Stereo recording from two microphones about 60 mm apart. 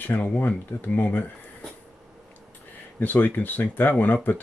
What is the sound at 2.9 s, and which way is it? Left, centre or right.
Speech, left.